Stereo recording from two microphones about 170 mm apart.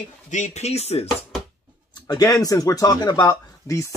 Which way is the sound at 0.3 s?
45° left (ahead or behind).